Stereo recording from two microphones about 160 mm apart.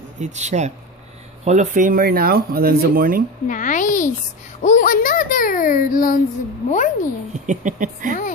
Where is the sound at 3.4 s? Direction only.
55° left (ahead or behind).